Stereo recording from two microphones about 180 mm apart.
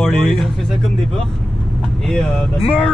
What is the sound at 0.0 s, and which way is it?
Speech, centre (ahead or behind).